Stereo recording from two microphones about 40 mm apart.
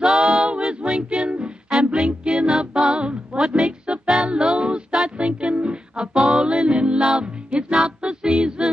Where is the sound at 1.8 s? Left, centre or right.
Right.